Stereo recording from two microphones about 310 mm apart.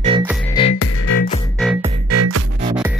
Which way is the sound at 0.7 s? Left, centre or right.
Left.